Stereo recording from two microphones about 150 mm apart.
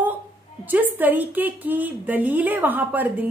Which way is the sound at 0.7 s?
10° right (ahead or behind).